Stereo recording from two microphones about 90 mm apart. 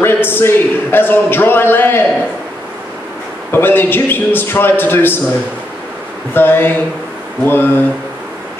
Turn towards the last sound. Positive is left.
turn(degrees=25)  # may be behind; listen again after turning